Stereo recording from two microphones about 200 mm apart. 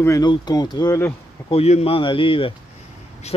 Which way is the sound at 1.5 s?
30° left (ahead or behind).